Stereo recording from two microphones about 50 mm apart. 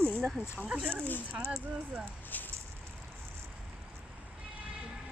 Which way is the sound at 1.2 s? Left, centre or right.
Right.